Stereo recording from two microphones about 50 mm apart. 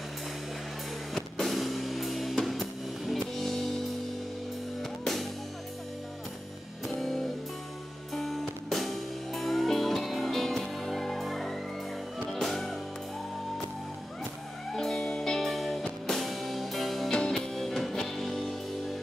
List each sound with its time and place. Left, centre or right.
1.1 s music: centre
7.0 s music: centre
14.7 s music: centre